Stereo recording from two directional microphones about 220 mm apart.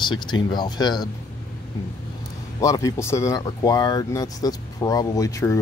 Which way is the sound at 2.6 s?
15° left (ahead or behind).